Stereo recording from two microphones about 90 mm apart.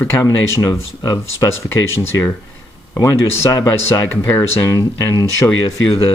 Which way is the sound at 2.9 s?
35° left (ahead or behind).